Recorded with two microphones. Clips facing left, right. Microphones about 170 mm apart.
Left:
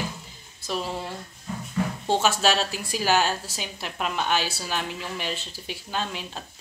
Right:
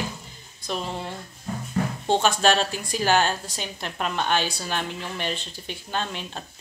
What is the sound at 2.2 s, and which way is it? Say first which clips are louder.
A woman's voice: right 2 dB; 5° left (ahead or behind).